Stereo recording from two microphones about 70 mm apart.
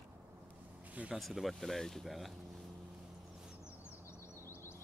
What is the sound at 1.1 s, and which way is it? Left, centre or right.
Speech, centre.